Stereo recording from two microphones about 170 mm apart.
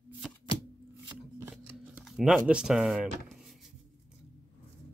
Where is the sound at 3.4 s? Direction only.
Centre (ahead or behind).